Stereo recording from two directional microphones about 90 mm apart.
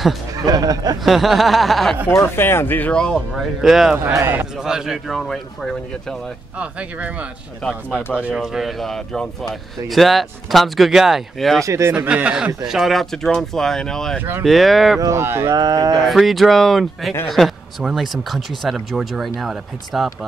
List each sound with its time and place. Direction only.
0.5 s speech: 45° right (ahead or behind)
1.0 s speech: centre (ahead or behind)
2.1 s speech: 25° left (ahead or behind)
3.3 s speech: 5° right (ahead or behind)
4.0 s speech: 30° right (ahead or behind)
4.6 s speech: 5° right (ahead or behind)
6.6 s speech: 15° right (ahead or behind)
8.4 s speech: centre (ahead or behind)
11.6 s speech: 35° right (ahead or behind)
12.1 s speech: 10° right (ahead or behind)
15.0 s speech: 35° right (ahead or behind)
15.5 s speech: 50° right (ahead or behind)
16.1 s speech: centre (ahead or behind)